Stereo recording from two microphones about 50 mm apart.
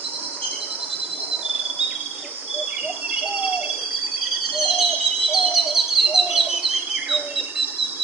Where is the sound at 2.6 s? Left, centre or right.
Centre.